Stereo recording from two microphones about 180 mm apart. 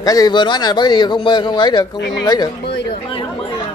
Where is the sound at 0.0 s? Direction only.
20° left (ahead or behind).